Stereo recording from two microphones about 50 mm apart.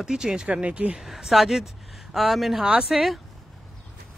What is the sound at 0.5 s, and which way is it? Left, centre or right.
Speech, right.